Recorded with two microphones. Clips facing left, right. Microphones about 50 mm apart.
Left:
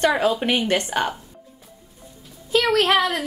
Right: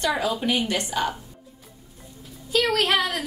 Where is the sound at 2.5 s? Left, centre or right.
Left.